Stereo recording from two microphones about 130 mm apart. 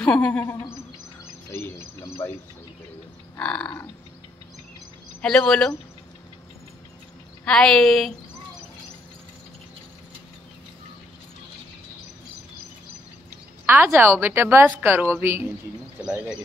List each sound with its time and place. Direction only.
0.0 s speech: 10° left (ahead or behind)
1.5 s speech: 20° left (ahead or behind)
3.3 s speech: 10° left (ahead or behind)
5.2 s a woman's voice: 5° left (ahead or behind)
7.4 s a woman's voice: 5° left (ahead or behind)
13.7 s a woman's voice: 15° right (ahead or behind)
16.0 s a woman's voice: 5° right (ahead or behind)